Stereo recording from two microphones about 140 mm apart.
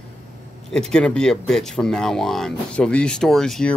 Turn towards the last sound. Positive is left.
turn(degrees=5)  # may be behind; listen again after turning